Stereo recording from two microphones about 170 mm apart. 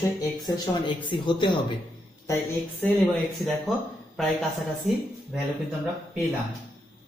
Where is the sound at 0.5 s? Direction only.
30° left (ahead or behind).